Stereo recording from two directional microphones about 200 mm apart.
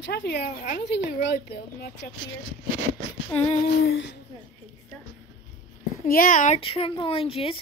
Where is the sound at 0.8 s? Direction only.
60° left (ahead or behind).